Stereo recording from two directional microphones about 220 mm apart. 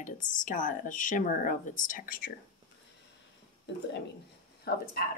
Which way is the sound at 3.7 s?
55° left (ahead or behind).